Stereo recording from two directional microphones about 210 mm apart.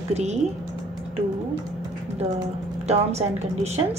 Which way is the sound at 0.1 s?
30° right (ahead or behind).